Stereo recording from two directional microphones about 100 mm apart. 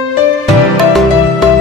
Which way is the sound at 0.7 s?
Centre (ahead or behind).